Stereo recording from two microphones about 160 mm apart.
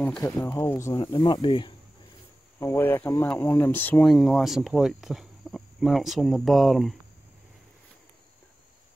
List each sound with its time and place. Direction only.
0.2 s speech: 20° left (ahead or behind)
2.6 s speech: 15° left (ahead or behind)